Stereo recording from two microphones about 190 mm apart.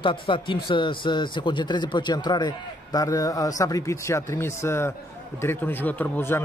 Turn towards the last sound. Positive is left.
turn(degrees=10)  # may be behind; listen again after turning